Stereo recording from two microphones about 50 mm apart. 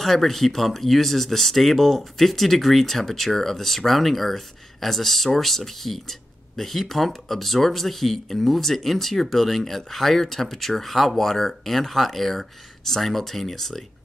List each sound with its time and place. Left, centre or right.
0.0 s speech: centre